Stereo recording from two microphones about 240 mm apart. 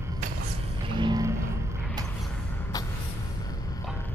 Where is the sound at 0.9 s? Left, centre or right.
Centre.